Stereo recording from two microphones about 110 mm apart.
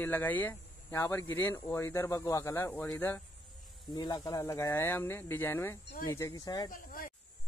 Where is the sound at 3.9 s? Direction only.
35° left (ahead or behind).